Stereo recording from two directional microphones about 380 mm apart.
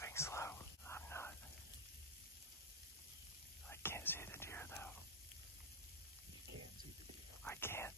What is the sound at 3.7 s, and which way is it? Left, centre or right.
Whispering, centre.